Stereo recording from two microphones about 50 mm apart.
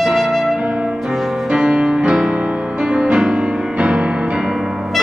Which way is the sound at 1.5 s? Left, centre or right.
Centre.